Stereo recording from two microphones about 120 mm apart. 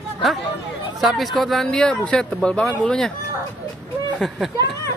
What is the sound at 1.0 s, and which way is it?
Speech, centre (ahead or behind).